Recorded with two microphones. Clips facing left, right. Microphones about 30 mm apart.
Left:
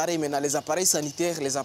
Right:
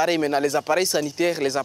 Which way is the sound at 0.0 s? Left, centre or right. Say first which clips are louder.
Right 5 dB; right.